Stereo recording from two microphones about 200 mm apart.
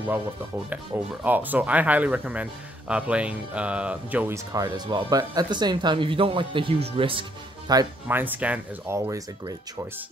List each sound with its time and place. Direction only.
0.7 s speech: 10° right (ahead or behind)